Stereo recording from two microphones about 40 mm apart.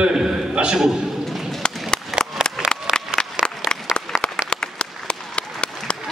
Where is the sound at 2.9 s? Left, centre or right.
Right.